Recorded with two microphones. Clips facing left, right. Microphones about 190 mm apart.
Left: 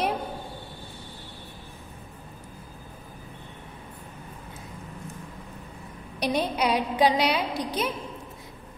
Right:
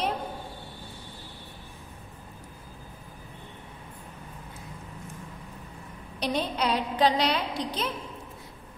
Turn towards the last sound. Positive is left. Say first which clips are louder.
# left 3 dB
turn(degrees=10)  # may be behind; listen again after turning